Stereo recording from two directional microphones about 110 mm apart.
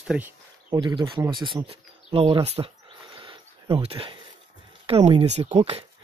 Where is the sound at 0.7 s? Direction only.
45° right (ahead or behind).